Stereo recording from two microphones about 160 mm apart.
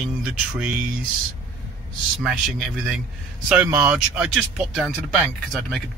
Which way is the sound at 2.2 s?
Centre (ahead or behind).